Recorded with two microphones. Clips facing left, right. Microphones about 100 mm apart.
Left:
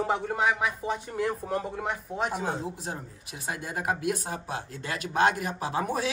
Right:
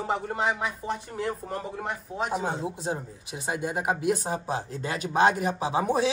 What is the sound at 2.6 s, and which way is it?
Speech, 25° right (ahead or behind).